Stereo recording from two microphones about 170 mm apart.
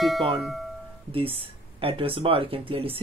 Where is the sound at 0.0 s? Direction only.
Centre (ahead or behind).